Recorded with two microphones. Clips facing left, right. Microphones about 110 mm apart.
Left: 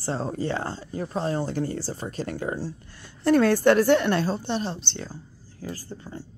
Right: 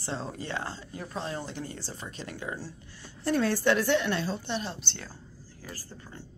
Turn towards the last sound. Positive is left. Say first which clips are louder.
# left 8 dB
turn(degrees=20)  # may be behind; listen again after turning